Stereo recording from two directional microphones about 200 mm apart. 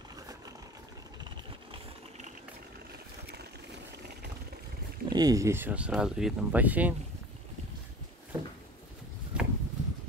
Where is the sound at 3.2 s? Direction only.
55° right (ahead or behind).